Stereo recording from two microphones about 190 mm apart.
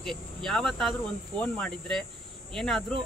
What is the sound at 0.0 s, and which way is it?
Cricket, centre (ahead or behind).